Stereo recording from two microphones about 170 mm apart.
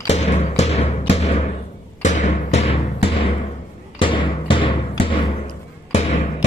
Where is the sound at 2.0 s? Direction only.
45° left (ahead or behind).